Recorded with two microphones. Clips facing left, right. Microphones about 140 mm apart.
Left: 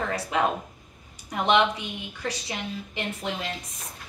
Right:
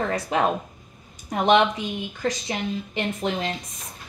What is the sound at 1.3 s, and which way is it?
A woman's voice, 35° right (ahead or behind).